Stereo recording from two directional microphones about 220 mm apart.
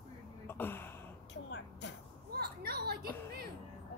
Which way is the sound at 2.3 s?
45° right (ahead or behind).